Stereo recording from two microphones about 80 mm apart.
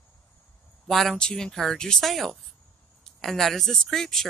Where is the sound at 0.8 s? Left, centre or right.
Centre.